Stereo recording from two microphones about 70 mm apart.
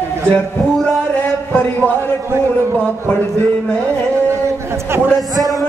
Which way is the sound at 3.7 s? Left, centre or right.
Right.